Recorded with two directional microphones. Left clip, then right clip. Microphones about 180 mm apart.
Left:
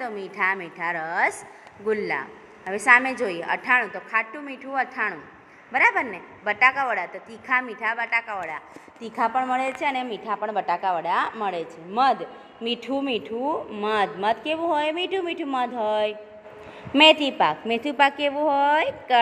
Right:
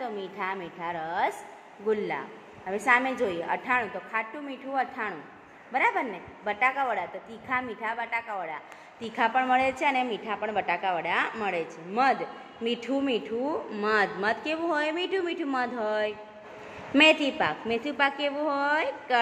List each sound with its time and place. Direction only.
0.4 s a woman's voice: 15° left (ahead or behind)